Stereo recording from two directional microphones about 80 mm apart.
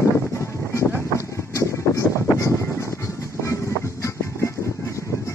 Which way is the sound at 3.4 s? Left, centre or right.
Left.